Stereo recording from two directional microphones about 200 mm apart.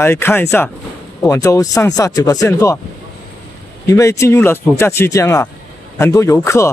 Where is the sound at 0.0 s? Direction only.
10° left (ahead or behind).